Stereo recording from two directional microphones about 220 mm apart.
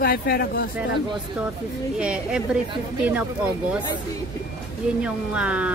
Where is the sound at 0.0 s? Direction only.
45° left (ahead or behind).